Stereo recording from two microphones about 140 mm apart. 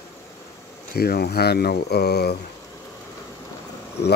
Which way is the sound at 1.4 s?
90° left.